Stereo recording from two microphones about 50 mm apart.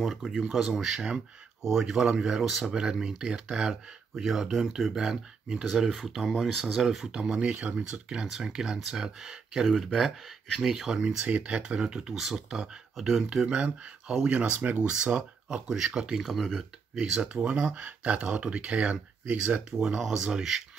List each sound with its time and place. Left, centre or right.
0.0 s speech: centre
2.4 s speech: centre; by 8.0 s right
8.1 s speech: centre
11.2 s speech: right; by 13.5 s centre
13.5 s speech: centre
14.3 s speech: right
16.2 s speech: centre
17.0 s speech: centre